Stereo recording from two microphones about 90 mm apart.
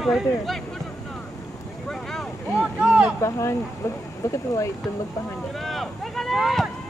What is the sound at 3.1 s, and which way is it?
Speech, 35° left (ahead or behind).